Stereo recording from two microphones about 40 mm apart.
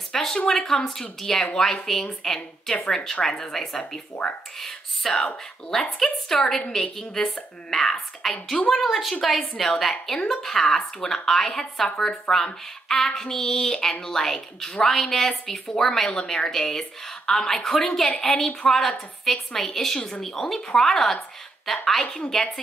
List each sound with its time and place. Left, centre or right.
0.1 s a sound: centre
0.5 s speech: centre
4.6 s whispering: centre
5.9 s a woman's voice: centre
20.0 s speech: centre
20.2 s speech: centre